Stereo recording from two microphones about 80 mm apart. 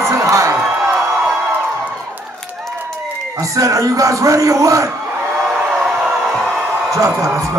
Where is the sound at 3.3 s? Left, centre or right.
Right.